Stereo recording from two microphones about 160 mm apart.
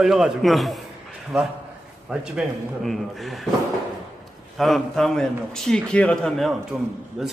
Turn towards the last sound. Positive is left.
turn(degrees=-5)  # may be behind; listen again after turning